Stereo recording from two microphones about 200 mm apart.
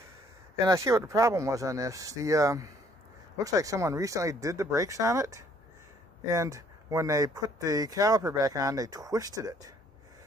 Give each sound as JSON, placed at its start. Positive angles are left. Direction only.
{"t": 0.7, "sound": "speech", "side_deg": -15}